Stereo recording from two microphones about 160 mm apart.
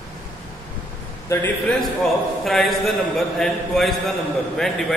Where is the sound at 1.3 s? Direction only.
10° left (ahead or behind).